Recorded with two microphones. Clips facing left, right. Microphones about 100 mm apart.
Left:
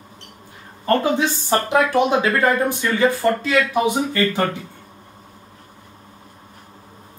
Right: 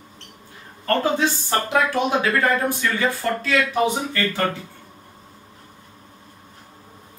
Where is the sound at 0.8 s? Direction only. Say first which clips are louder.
Left 2 dB; 20° left (ahead or behind).